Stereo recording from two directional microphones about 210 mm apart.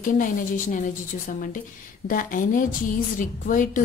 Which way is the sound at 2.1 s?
40° left (ahead or behind).